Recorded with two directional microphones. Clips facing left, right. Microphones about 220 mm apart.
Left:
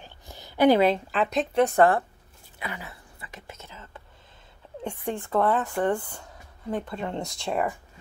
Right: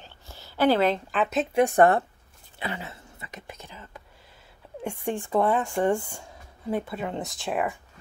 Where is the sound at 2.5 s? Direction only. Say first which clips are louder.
Right 3 dB; 25° right (ahead or behind).